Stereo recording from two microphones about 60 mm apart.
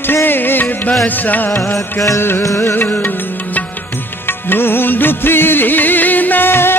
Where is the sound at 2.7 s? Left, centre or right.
Left.